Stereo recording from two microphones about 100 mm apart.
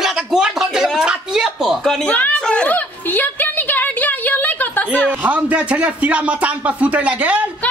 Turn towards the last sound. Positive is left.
turn(degrees=-15)  # may be behind; listen again after turning